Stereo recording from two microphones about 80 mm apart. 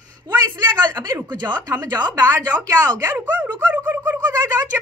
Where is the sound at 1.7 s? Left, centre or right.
Right.